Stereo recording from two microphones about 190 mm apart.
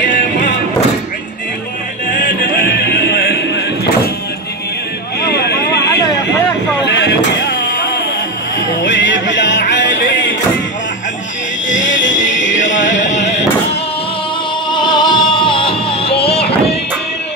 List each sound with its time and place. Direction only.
0.0 s music: 40° left (ahead or behind)
2.1 s music: 45° left (ahead or behind)
5.2 s a sound: 55° left (ahead or behind)
7.0 s vehicle: 65° left (ahead or behind)
8.8 s music: 75° left (ahead or behind)
11.7 s music: 80° left
14.7 s music: 25° left (ahead or behind)